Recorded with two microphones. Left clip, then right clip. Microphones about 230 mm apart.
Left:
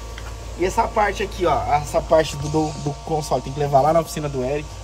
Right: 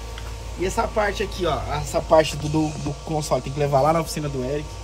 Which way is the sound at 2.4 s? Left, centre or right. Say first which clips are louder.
Left 2 dB; right.